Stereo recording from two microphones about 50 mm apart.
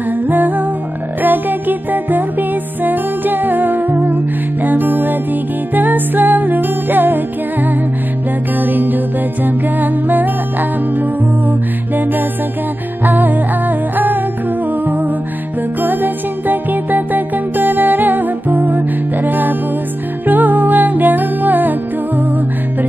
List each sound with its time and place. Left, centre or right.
0.3 s music: right
8.5 s music: right
15.8 s music: right